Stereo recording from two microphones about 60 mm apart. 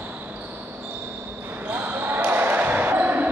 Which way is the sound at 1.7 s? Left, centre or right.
Right.